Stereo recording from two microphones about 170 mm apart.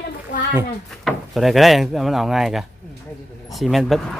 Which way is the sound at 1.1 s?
Centre (ahead or behind).